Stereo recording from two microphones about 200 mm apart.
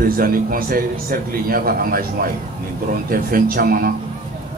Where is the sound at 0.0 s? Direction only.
45° right (ahead or behind).